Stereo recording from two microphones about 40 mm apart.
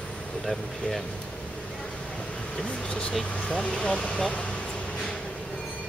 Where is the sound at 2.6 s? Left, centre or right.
Left.